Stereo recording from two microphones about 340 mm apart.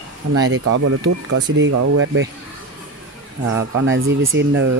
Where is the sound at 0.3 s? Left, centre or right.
Right.